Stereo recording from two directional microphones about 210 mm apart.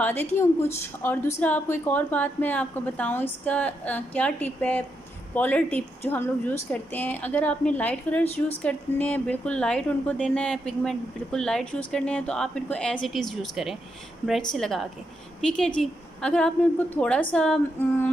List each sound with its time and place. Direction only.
0.0 s a woman's voice: 10° left (ahead or behind)